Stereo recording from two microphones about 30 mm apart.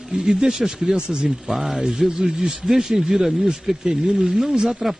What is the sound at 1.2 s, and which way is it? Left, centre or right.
A man's voice, centre.